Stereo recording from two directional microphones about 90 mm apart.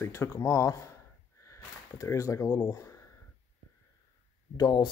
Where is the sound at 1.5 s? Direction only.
35° left (ahead or behind).